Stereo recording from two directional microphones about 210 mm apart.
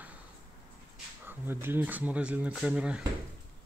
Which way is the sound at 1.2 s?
10° right (ahead or behind).